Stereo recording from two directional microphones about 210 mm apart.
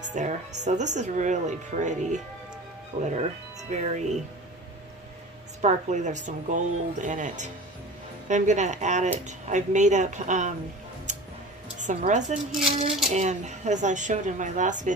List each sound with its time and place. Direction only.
0.1 s speech: 35° right (ahead or behind)
5.6 s speech: 35° right (ahead or behind)
11.8 s speech: 35° right (ahead or behind)